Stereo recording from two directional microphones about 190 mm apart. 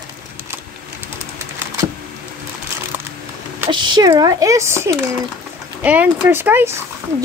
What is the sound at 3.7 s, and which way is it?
Speech, 25° right (ahead or behind).